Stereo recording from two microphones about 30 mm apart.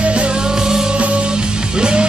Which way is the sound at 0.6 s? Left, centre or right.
Right.